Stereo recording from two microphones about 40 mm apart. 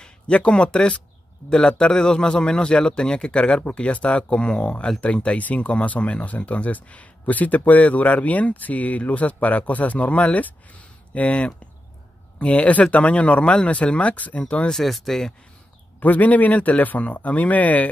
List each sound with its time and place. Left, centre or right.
0.0 s a man's voice: left
3.9 s a man's voice: left
14.7 s speech: centre
16.0 s speech: left